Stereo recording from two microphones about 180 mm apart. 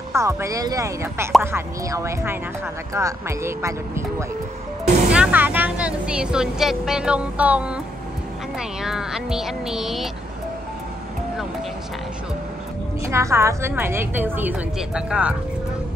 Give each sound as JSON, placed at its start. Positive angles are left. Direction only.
{"t": 0.1, "sound": "speech", "side_deg": -15}
{"t": 4.8, "sound": "music", "side_deg": -40}
{"t": 5.1, "sound": "speech", "side_deg": -10}
{"t": 13.0, "sound": "speech", "side_deg": -15}